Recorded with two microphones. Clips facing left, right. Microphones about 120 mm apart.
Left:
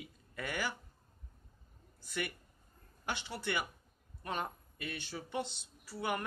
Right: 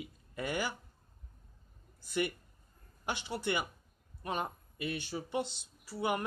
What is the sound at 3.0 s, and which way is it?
Speech, 15° right (ahead or behind).